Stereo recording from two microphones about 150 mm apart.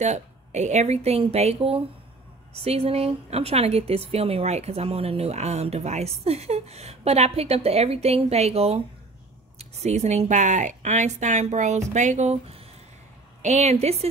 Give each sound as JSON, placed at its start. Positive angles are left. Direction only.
{"t": 0.0, "sound": "a woman's voice", "side_deg": -50}